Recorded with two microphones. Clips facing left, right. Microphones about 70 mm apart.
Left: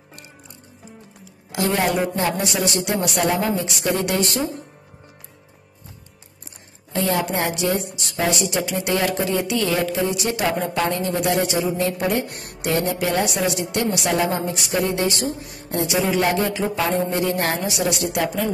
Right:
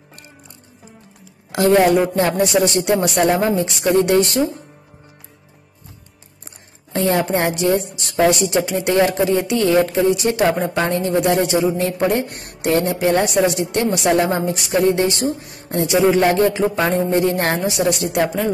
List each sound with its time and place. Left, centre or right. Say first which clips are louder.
2.1 s a woman's voice: right 6 dB; right
6.9 s a woman's voice: right 4 dB; right